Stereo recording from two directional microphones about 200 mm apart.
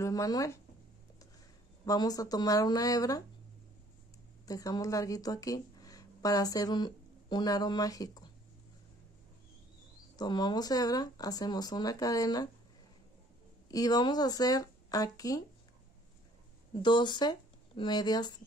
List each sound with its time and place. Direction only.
0.0 s speech: 20° left (ahead or behind)
1.9 s speech: 20° left (ahead or behind)
4.5 s a woman's voice: 20° left (ahead or behind)
10.1 s speech: 20° left (ahead or behind)
13.7 s speech: 20° left (ahead or behind)
16.8 s speech: 20° left (ahead or behind)